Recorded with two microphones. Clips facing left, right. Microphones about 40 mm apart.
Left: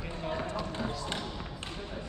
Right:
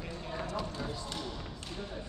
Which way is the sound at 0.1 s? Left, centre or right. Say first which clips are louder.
Left 4 dB; left.